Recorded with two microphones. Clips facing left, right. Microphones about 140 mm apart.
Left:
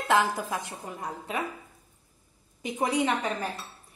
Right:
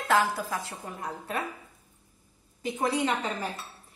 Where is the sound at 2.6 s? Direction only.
15° left (ahead or behind).